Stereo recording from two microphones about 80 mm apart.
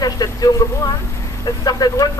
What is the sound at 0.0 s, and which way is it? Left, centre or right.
Speech, left.